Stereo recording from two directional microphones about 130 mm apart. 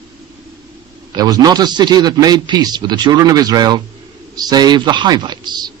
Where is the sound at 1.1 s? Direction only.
30° right (ahead or behind).